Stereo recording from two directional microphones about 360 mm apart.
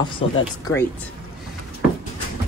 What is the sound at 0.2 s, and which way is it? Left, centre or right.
Speech, centre.